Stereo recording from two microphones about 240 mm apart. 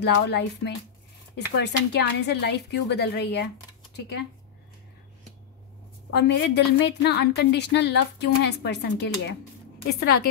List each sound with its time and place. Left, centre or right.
0.0 s a woman's voice: left
6.1 s a woman's voice: left